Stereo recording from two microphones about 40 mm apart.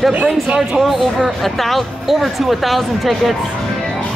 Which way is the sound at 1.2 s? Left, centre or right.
Centre.